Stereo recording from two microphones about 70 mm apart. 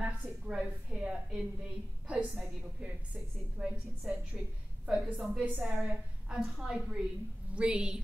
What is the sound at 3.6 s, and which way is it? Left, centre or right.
A woman's voice, centre.